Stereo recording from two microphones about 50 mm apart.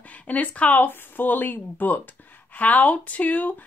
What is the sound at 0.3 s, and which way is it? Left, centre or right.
Speech, left.